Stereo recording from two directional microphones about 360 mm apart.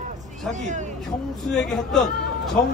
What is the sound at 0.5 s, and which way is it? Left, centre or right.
Speech, centre.